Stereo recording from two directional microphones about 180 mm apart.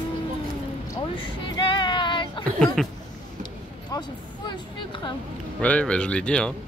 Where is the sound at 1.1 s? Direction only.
25° left (ahead or behind).